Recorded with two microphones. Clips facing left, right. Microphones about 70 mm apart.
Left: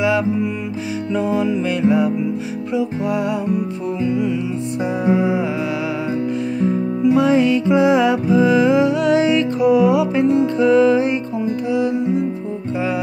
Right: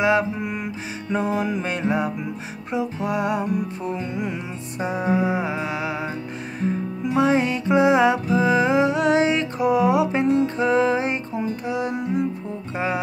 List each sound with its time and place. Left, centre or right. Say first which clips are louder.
1.1 s music: left 4 dB; right
5.0 s music: left 4 dB; right
7.2 s music: left 2 dB; right
11.7 s music: left 8 dB; right